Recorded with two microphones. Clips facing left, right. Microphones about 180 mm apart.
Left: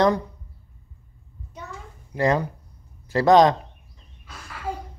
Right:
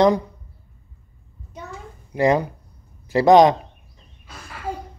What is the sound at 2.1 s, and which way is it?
Speech, 15° right (ahead or behind).